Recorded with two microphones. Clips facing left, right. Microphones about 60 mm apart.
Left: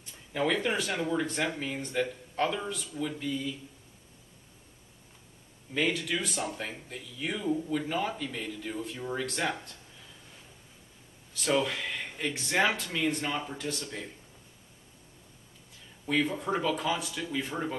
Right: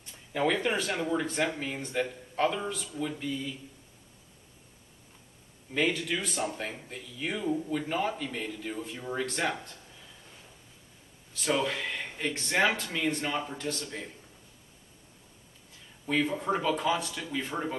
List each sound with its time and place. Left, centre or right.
0.0 s a sound: centre
0.7 s speech: centre
5.8 s speech: centre
11.3 s speech: centre
16.1 s speech: centre